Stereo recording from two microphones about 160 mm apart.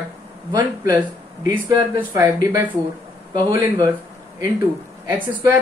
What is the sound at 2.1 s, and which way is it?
Speech, 25° right (ahead or behind).